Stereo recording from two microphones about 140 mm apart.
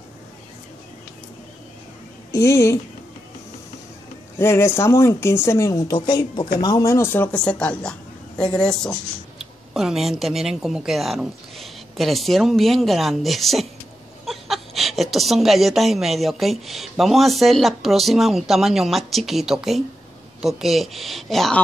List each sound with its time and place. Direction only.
2.3 s speech: 20° left (ahead or behind)
4.4 s a woman's voice: 15° left (ahead or behind); by 21.5 s centre (ahead or behind)